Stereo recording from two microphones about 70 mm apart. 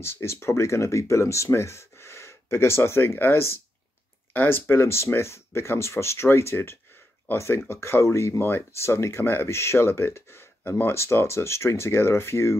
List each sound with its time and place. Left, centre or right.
0.0 s speech: left